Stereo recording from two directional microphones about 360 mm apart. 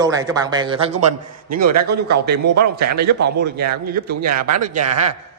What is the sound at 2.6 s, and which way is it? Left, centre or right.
Speech, right.